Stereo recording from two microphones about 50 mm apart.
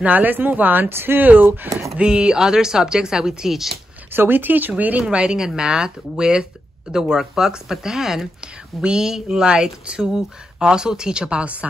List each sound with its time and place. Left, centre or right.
0.0 s speech: right
0.8 s speech: right
2.0 s speech: centre
4.1 s speech: right
5.0 s speech: centre